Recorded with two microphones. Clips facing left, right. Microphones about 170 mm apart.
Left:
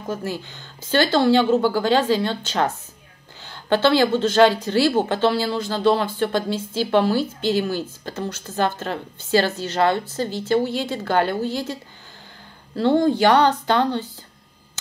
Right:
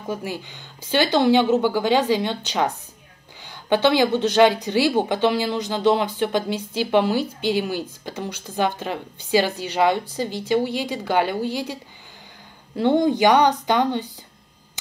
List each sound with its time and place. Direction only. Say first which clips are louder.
0.1 s speech: left 1 dB; 15° right (ahead or behind)